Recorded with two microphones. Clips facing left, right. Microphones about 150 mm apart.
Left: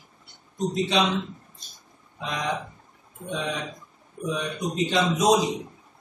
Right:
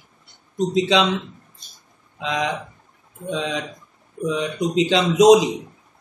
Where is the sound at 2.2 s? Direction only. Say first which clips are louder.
Right 5 dB; 90° right.